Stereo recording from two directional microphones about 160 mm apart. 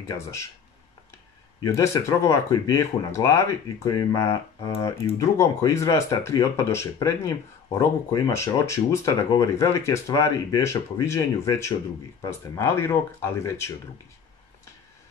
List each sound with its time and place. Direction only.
1.6 s speech: 20° left (ahead or behind)